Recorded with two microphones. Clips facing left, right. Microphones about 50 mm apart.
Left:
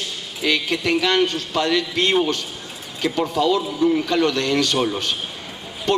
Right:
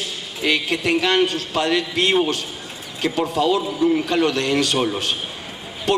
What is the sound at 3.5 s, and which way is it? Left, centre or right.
A man's voice, centre.